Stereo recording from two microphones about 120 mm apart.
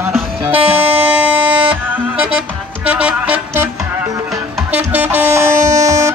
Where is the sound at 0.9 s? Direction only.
10° right (ahead or behind).